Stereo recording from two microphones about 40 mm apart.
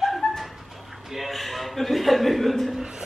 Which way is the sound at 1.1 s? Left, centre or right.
Centre.